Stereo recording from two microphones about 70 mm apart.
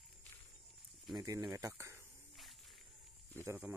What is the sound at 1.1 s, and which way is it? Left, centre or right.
Speech, right.